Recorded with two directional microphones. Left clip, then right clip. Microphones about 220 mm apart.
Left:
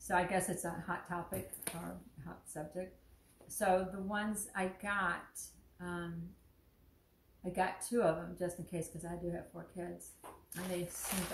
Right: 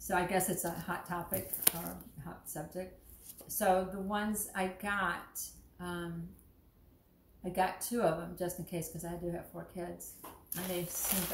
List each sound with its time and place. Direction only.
0.0 s a woman's voice: centre (ahead or behind)
1.7 s speech: 40° right (ahead or behind)
2.2 s a woman's voice: centre (ahead or behind)
7.5 s a woman's voice: centre (ahead or behind)